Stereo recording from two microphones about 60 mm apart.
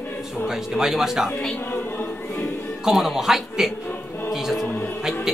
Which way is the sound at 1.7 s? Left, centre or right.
Left.